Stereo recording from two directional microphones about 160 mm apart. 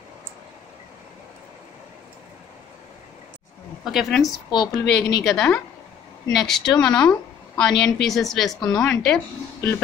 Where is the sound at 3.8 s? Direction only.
Centre (ahead or behind).